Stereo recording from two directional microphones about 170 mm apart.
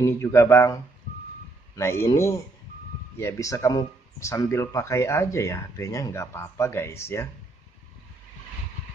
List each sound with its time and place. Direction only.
0.0 s speech: 15° left (ahead or behind)
1.8 s speech: 15° left (ahead or behind)